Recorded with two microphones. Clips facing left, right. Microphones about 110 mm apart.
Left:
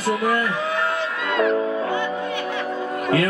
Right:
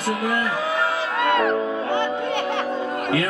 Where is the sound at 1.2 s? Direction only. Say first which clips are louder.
Even; 60° right (ahead or behind).